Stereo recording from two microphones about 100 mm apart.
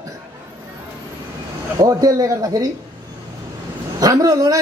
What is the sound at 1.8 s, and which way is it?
Speech, 35° right (ahead or behind).